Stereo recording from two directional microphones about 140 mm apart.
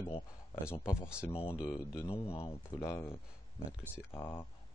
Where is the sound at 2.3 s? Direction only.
45° left (ahead or behind).